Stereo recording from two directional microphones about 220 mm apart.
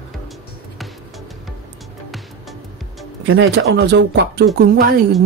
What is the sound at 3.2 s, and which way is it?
Speech, 55° right (ahead or behind).